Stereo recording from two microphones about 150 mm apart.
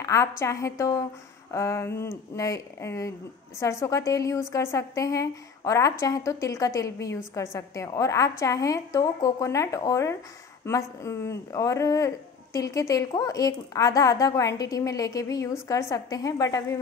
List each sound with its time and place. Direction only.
0.0 s a woman's voice: 20° left (ahead or behind)